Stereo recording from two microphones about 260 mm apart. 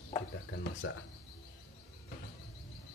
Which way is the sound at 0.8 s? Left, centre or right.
Left.